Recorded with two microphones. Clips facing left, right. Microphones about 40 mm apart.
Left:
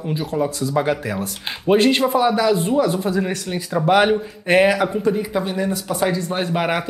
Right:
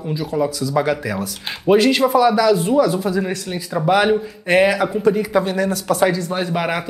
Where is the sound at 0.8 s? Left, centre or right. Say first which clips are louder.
Right 1 dB; left.